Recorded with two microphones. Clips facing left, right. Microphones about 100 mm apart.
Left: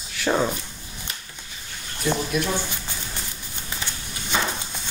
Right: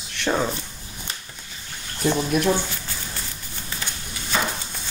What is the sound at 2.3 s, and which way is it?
Speech, 45° right (ahead or behind).